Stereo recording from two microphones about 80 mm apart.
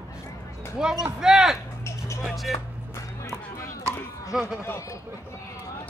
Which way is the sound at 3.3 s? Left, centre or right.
Left.